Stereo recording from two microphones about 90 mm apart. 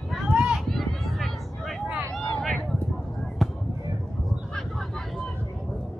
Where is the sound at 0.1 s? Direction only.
10° right (ahead or behind).